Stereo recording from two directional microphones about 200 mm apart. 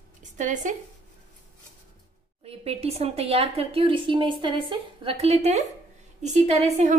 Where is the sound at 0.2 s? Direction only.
40° right (ahead or behind).